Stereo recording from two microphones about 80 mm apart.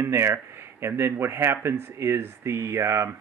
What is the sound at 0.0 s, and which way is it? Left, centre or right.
Speech, right.